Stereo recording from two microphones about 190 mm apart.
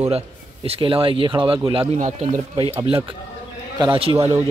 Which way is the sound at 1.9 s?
40° right (ahead or behind).